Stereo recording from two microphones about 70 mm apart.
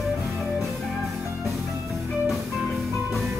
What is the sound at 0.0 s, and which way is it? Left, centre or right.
Music, centre.